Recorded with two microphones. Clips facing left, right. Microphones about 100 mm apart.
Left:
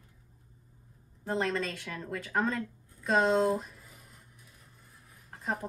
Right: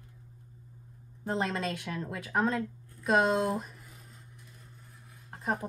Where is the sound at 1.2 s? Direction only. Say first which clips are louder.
Even; 10° right (ahead or behind).